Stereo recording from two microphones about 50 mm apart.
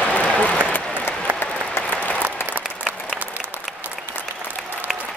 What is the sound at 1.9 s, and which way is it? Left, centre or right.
Applause, left.